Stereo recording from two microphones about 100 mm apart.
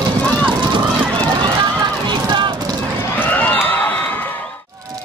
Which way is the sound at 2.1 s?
50° right (ahead or behind).